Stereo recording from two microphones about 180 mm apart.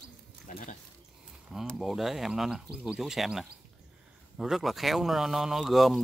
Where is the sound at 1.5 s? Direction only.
Centre (ahead or behind).